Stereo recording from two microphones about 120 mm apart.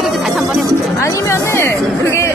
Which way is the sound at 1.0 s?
25° left (ahead or behind).